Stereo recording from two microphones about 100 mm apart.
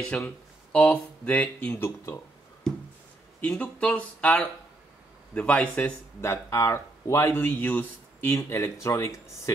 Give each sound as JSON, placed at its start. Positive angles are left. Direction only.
{"t": 0.1, "sound": "speech", "side_deg": 10}
{"t": 3.3, "sound": "speech", "side_deg": 15}
{"t": 6.2, "sound": "a man's voice", "side_deg": 25}